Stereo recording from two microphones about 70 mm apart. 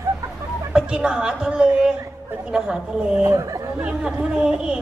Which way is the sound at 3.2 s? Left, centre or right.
Right.